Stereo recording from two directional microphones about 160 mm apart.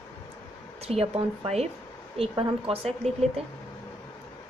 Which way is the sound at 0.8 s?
40° right (ahead or behind).